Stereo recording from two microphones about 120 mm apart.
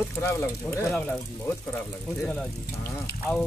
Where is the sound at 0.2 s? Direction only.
20° left (ahead or behind).